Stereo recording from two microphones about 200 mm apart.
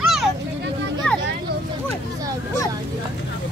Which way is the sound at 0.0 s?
Centre (ahead or behind).